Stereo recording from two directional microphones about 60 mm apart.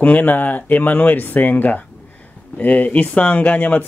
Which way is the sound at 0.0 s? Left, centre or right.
Left.